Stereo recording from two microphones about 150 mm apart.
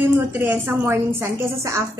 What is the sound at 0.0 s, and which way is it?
A woman's voice, 15° right (ahead or behind).